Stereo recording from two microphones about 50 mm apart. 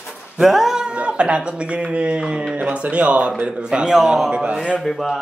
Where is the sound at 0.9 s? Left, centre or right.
Right.